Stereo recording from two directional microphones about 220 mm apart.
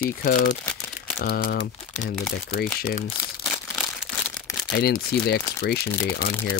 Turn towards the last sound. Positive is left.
turn(degrees=45)  # may be behind; listen again after turning